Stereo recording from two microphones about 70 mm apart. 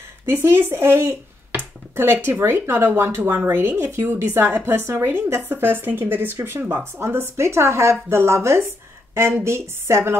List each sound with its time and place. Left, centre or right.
0.3 s a woman's voice: right
1.5 s finger snapping: right
2.2 s a woman's voice: right